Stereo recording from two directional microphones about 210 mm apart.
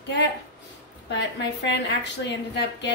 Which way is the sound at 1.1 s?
55° left (ahead or behind).